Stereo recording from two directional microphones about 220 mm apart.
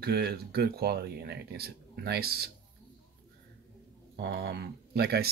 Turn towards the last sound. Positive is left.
turn(degrees=-45)  # may be behind; listen again after turning